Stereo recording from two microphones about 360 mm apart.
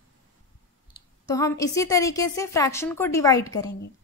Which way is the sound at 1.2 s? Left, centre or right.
Centre.